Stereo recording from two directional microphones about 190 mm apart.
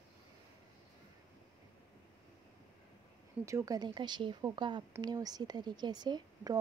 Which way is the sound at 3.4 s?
15° right (ahead or behind).